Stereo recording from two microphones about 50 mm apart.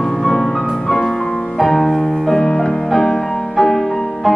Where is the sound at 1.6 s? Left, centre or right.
Centre.